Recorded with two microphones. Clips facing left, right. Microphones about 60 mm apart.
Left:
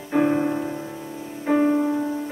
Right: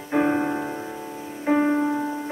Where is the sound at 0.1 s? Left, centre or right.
Centre.